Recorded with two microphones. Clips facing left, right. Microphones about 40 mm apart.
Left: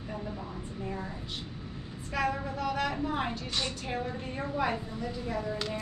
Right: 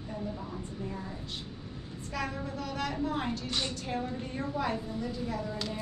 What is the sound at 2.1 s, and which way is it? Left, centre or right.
A woman's voice, centre.